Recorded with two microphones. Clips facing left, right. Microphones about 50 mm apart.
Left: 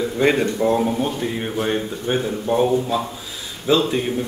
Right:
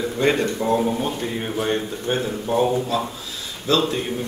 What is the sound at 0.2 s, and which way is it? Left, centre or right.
Speech, centre.